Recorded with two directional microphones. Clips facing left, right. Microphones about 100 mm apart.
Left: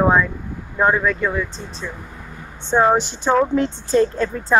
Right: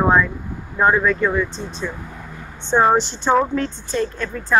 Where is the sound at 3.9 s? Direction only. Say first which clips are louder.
Left 9 dB; 35° left (ahead or behind).